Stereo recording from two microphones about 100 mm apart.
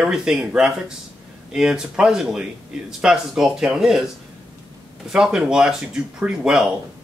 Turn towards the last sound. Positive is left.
turn(degrees=-5)  # may be behind; listen again after turning